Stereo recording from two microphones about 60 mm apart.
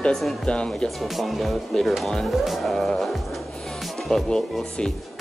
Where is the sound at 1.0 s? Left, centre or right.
Centre.